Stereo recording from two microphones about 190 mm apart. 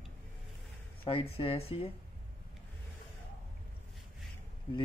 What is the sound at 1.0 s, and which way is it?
Speech, 30° left (ahead or behind).